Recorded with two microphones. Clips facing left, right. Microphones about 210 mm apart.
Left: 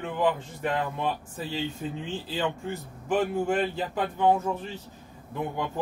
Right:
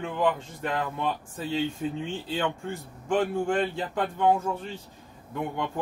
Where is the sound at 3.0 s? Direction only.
5° left (ahead or behind).